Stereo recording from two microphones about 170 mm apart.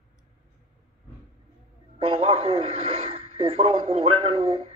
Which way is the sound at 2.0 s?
35° right (ahead or behind).